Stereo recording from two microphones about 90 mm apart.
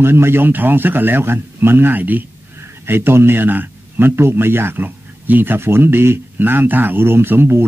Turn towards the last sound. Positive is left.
turn(degrees=-25)  # may be behind; listen again after turning